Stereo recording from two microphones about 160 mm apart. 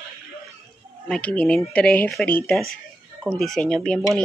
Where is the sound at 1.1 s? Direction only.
10° left (ahead or behind).